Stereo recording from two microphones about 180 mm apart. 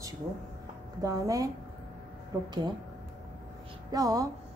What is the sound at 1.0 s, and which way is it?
Speech, 20° right (ahead or behind).